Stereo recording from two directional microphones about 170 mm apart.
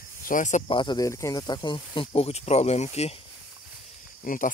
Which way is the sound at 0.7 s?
25° left (ahead or behind).